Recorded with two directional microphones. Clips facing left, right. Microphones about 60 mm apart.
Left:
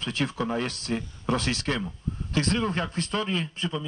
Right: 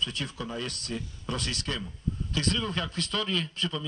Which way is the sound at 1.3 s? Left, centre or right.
Left.